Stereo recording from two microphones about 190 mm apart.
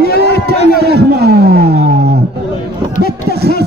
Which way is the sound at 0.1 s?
60° left (ahead or behind).